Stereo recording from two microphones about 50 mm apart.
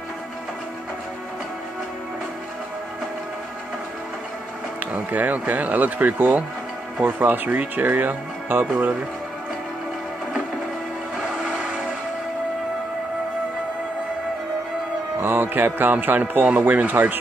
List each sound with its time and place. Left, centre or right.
4.9 s a man's voice: right
11.1 s vehicle: centre
15.1 s a man's voice: right